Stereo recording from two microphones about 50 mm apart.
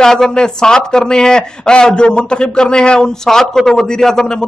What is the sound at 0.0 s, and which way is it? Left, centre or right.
Speech, centre.